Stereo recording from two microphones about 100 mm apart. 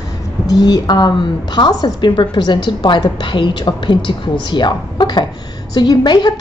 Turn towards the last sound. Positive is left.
turn(degrees=45)  # may be behind; listen again after turning